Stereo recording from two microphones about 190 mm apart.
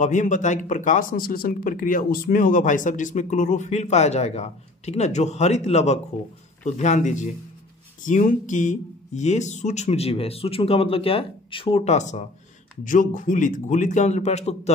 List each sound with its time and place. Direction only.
0.0 s speech: 40° left (ahead or behind)